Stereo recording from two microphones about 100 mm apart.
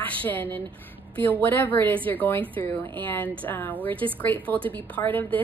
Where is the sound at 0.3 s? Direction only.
15° left (ahead or behind).